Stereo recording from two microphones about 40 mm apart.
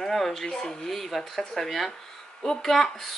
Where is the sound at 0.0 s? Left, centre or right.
Centre.